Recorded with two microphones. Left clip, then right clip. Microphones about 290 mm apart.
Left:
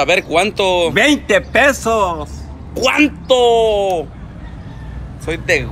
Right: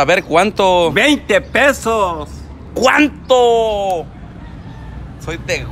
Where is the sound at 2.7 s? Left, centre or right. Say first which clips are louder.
Right 2 dB; right.